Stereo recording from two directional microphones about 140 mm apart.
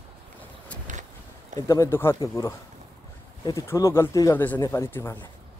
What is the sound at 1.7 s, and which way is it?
A man's voice, 20° left (ahead or behind).